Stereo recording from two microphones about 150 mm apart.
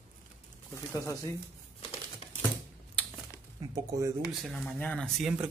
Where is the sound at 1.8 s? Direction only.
40° left (ahead or behind).